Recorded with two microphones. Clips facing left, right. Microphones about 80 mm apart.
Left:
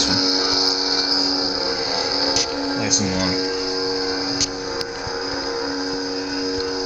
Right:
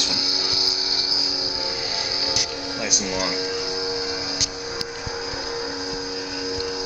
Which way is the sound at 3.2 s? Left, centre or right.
Centre.